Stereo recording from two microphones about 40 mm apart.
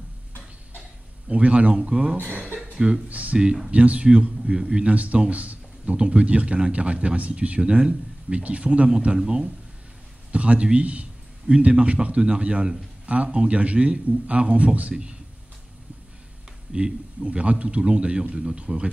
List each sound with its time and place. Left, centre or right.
1.3 s a man's voice: right
1.8 s a man's voice: right
4.8 s a man's voice: right
10.3 s a man's voice: right
17.3 s a man's voice: right